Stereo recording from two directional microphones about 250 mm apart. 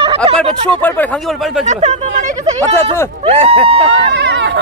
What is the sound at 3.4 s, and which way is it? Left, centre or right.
Speech, right.